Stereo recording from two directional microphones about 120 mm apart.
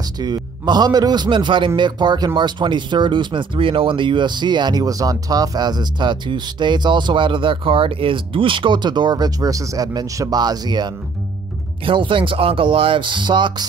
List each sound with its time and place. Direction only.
0.2 s speech: 35° right (ahead or behind)